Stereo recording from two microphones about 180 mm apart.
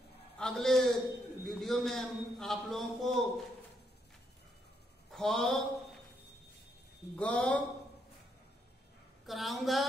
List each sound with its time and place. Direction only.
0.4 s a man's voice: 5° left (ahead or behind)
5.1 s speech: centre (ahead or behind)
7.2 s speech: 5° left (ahead or behind)
9.2 s a man's voice: centre (ahead or behind)